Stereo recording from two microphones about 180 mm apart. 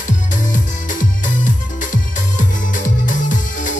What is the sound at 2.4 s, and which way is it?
Music, 45° left (ahead or behind).